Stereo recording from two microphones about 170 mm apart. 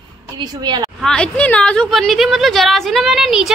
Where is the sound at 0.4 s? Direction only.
25° right (ahead or behind).